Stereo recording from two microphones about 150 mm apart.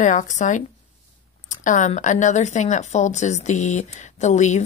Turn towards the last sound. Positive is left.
turn(degrees=50)  # may be behind; listen again after turning